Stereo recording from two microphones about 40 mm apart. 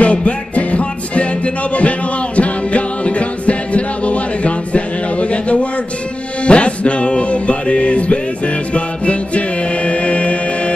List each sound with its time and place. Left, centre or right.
0.0 s music: left